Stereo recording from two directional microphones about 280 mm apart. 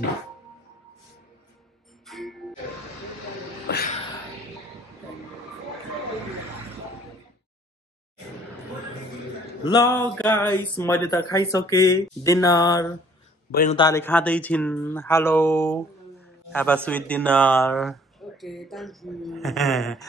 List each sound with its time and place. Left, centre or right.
2.0 s music: centre
3.7 s music: left
9.7 s speech: centre
13.5 s a man's voice: left
13.7 s a man's voice: centre